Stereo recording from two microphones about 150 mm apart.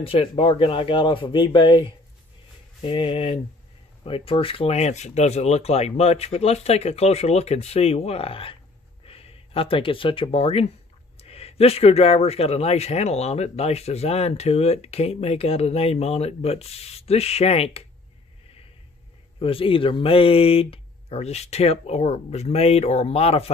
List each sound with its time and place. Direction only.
0.0 s a man's voice: 40° left (ahead or behind)
19.4 s a man's voice: 35° left (ahead or behind)